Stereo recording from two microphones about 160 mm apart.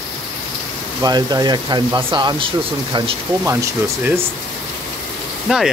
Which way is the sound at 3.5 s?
15° right (ahead or behind).